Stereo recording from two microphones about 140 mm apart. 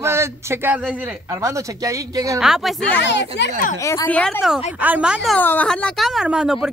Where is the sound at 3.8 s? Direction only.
20° left (ahead or behind).